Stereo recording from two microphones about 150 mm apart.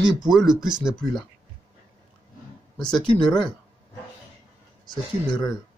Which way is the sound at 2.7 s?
5° left (ahead or behind).